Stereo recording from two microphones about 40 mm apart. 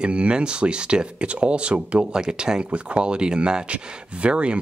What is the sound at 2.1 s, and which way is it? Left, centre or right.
Speech, right.